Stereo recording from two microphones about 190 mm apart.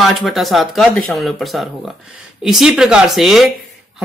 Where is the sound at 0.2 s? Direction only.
Centre (ahead or behind).